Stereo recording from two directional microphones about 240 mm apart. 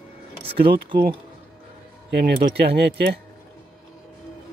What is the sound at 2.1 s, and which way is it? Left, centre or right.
Speech, right.